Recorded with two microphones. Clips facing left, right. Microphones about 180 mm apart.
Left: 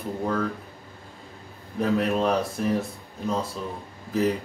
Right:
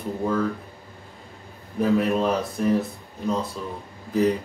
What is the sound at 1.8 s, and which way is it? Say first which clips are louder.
Speech: right 2 dB; centre (ahead or behind).